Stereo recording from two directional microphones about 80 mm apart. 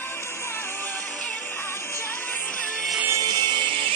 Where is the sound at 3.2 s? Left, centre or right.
Right.